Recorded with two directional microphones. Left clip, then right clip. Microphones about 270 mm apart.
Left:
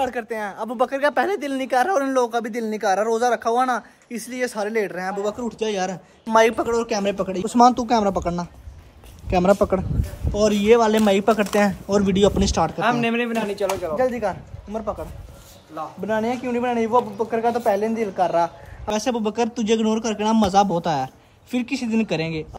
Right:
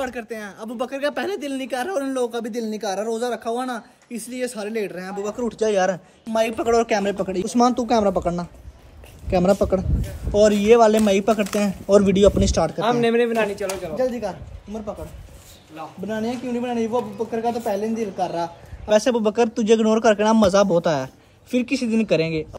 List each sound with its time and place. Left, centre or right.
0.0 s a woman's voice: centre
13.0 s speech: left
13.9 s a woman's voice: centre
16.1 s a woman's voice: centre